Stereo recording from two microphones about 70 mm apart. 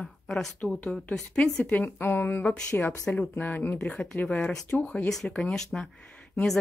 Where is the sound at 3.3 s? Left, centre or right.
Left.